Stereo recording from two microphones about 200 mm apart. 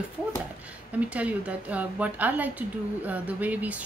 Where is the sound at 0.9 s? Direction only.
5° right (ahead or behind).